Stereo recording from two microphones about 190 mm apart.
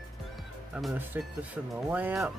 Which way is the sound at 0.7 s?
10° right (ahead or behind).